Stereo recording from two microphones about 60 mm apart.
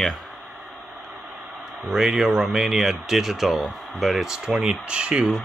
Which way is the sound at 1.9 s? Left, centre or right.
Centre.